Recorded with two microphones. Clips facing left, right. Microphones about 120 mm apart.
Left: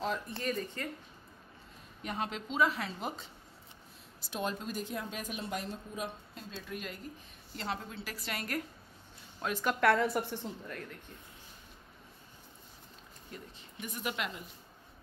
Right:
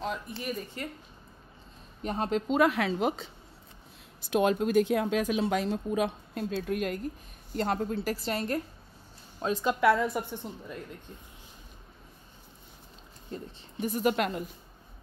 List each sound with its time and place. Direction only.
0.4 s speech: 10° right (ahead or behind)
2.0 s speech: 40° right (ahead or behind); by 3.3 s 90° right
4.3 s speech: 65° right (ahead or behind); by 8.2 s 45° right (ahead or behind)
8.2 s a woman's voice: 30° right (ahead or behind)
9.5 s speech: 20° right (ahead or behind)
9.8 s a woman's voice: 5° right (ahead or behind)
10.7 s speech: 20° right (ahead or behind)
13.3 s a woman's voice: 35° right (ahead or behind)